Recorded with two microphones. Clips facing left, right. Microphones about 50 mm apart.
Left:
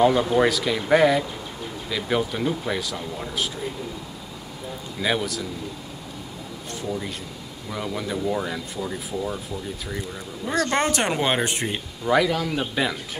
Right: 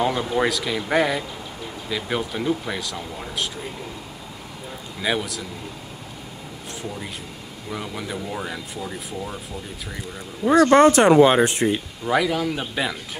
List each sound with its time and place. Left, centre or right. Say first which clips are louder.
0.0 s speech: left 3 dB; centre
5.0 s speech: even; centre
7.7 s speech: left 2 dB; centre
10.8 s speech: right 10 dB; right
11.6 s speech: right 5 dB; centre